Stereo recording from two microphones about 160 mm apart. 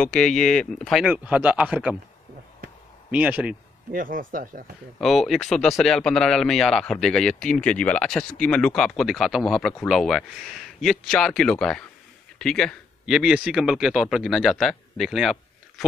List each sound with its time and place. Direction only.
0.0 s a man's voice: 5° left (ahead or behind)
3.1 s a man's voice: 10° right (ahead or behind)
3.9 s speech: 60° right (ahead or behind)
5.0 s speech: centre (ahead or behind)